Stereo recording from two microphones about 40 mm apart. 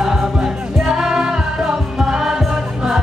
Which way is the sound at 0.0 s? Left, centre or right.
Centre.